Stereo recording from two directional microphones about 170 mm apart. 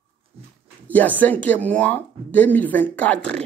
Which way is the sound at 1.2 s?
10° left (ahead or behind).